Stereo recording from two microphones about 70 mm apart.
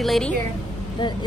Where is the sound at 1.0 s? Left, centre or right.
Left.